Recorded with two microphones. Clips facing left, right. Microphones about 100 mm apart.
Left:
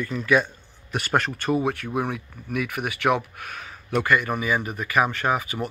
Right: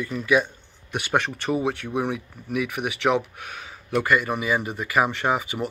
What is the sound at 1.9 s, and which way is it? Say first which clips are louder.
Speech: right 1 dB; 15° right (ahead or behind).